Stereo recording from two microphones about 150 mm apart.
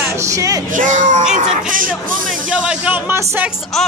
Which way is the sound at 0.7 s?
55° right (ahead or behind).